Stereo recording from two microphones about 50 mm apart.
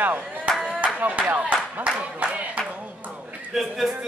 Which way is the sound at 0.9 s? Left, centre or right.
Right.